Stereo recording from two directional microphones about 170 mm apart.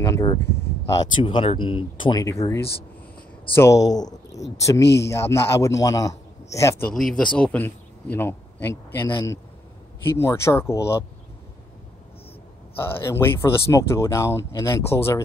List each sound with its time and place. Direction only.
0.0 s speech: 20° left (ahead or behind)
3.5 s speech: 15° left (ahead or behind)
4.8 s speech: 85° left
5.1 s a man's voice: 15° left (ahead or behind)
6.9 s speech: 5° left (ahead or behind)
12.7 s speech: 15° left (ahead or behind)